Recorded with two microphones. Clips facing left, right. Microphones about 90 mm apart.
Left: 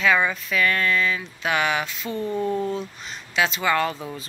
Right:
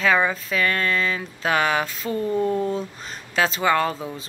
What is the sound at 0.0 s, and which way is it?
A woman's voice, 35° right (ahead or behind).